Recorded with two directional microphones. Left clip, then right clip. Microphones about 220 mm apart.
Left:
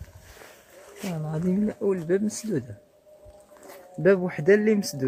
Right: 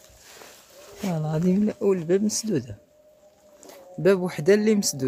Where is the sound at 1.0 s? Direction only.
30° right (ahead or behind).